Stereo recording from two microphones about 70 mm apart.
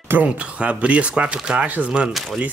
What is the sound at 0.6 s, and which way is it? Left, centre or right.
Speech, centre.